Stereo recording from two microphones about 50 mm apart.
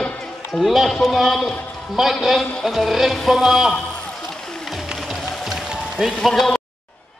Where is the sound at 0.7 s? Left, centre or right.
Centre.